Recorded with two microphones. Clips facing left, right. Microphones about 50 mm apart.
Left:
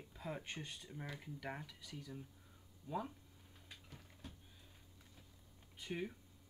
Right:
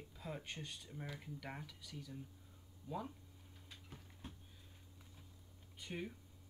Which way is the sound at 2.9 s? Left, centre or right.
Centre.